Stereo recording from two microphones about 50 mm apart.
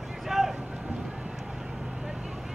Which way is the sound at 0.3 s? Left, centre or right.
Centre.